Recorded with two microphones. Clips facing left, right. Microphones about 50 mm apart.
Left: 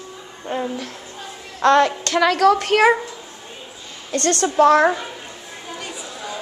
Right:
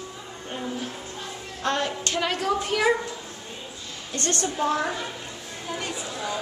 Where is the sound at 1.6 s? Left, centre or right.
Left.